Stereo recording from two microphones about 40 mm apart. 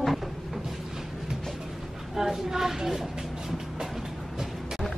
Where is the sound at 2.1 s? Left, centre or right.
Centre.